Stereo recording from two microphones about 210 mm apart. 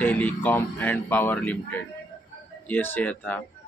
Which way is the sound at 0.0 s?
5° left (ahead or behind).